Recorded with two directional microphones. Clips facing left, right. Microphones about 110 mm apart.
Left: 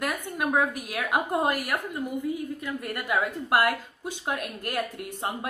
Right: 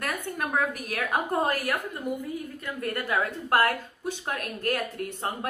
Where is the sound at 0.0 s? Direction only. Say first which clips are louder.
Left 2 dB; 15° left (ahead or behind).